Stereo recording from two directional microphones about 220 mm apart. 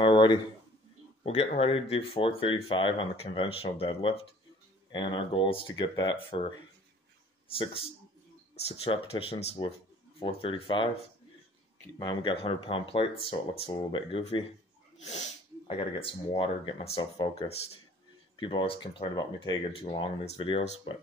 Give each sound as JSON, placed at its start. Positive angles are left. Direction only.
{"t": 0.0, "sound": "a sound", "side_deg": 20}
{"t": 1.2, "sound": "speech", "side_deg": 30}
{"t": 7.4, "sound": "speech", "side_deg": 25}